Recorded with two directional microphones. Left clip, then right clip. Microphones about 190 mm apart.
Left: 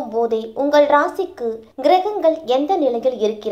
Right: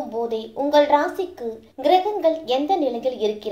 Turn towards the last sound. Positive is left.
turn(degrees=20)  # may be behind; listen again after turning